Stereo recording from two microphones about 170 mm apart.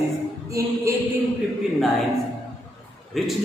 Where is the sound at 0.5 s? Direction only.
20° right (ahead or behind).